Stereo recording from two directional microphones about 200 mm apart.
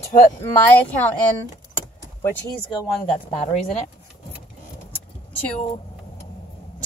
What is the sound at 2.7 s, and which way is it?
Speech, 25° left (ahead or behind).